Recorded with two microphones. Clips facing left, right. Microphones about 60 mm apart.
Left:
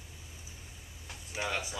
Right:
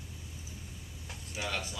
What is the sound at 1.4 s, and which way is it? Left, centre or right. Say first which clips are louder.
Speech: left 2 dB; centre.